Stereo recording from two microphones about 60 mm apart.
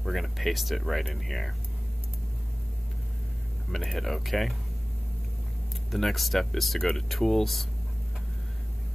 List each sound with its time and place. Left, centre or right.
0.0 s speech: centre
3.7 s speech: centre
5.9 s speech: centre